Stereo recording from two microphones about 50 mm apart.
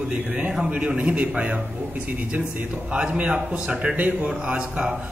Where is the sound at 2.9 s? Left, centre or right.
Right.